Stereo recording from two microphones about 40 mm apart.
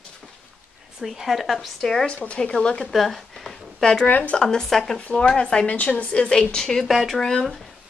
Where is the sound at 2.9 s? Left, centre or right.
Centre.